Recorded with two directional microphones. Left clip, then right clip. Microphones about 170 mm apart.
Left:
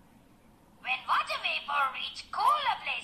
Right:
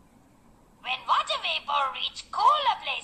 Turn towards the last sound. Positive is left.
turn(degrees=-35)  # may be behind; listen again after turning